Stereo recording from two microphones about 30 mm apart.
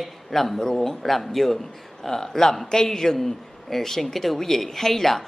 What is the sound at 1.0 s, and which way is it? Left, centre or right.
Speech, centre.